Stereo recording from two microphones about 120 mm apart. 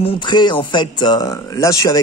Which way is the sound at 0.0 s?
45° left (ahead or behind).